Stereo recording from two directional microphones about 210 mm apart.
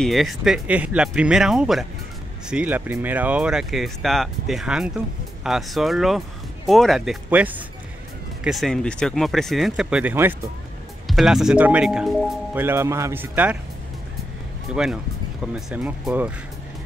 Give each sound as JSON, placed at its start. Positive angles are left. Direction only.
{"t": 0.0, "sound": "speech", "side_deg": 0}
{"t": 14.7, "sound": "speech", "side_deg": 0}